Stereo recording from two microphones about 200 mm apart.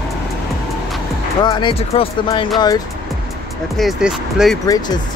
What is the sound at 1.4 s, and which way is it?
Speech, 25° left (ahead or behind).